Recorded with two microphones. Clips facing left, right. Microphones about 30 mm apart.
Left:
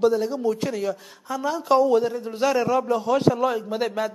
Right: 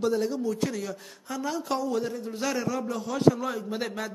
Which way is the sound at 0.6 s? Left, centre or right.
Centre.